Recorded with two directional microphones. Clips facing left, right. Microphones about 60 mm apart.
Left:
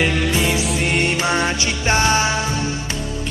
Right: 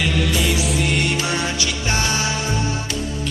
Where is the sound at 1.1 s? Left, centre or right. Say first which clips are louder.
Left 3 dB; left.